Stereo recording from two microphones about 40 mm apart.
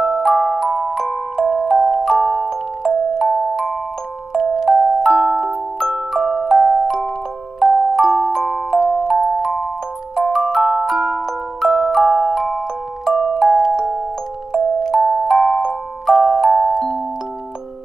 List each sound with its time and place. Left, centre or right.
0.2 s music: centre
0.9 s glockenspiel: centre
4.3 s music: centre
4.6 s glockenspiel: centre
15.0 s music: centre
16.7 s glockenspiel: centre